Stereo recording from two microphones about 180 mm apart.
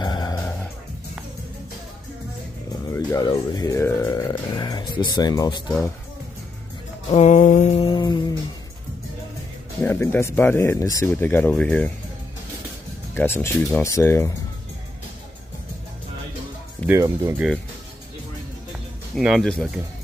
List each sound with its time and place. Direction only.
0.0 s dog: 25° left (ahead or behind)
2.9 s burping: 20° left (ahead or behind)
7.1 s mantra: 40° left (ahead or behind)
7.9 s music: 25° left (ahead or behind)
9.8 s speech: 10° left (ahead or behind)
13.1 s speech: 15° left (ahead or behind)
16.8 s speech: 15° right (ahead or behind)
18.7 s music: 5° right (ahead or behind)